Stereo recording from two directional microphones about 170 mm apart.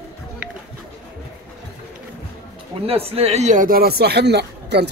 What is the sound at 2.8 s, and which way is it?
A man's voice, 35° right (ahead or behind).